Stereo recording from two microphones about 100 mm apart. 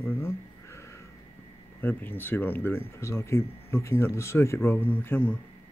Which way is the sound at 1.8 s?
20° left (ahead or behind).